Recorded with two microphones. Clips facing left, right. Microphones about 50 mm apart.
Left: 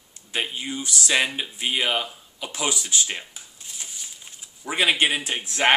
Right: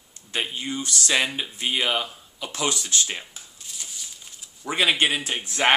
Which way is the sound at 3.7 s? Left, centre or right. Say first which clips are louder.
Even; left.